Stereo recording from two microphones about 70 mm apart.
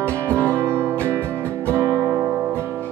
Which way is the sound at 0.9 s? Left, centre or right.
Right.